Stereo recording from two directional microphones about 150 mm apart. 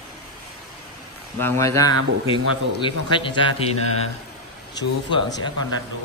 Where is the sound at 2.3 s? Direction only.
35° left (ahead or behind).